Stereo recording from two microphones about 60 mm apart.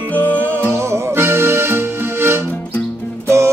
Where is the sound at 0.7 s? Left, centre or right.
Right.